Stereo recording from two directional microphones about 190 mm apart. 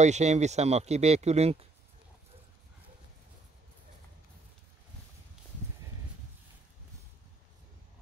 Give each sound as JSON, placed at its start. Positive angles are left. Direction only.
{"t": 0.0, "sound": "speech", "side_deg": -35}